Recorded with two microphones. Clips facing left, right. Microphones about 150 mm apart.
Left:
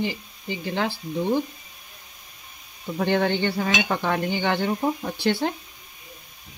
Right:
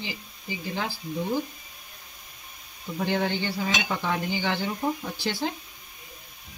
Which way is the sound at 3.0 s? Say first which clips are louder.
Left 5 dB; 60° left (ahead or behind).